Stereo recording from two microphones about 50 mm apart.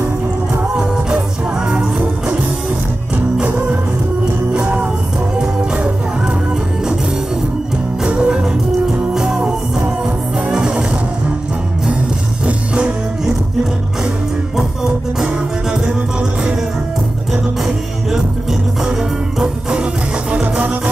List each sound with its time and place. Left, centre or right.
4.6 s music: right
5.4 s music: centre
8.1 s music: centre
9.1 s music: centre
10.5 s music: centre
12.4 s music: right
15.1 s music: centre
17.3 s music: centre; by 20.9 s right